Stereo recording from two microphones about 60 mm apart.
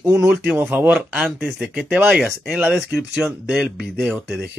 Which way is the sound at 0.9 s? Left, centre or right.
Centre.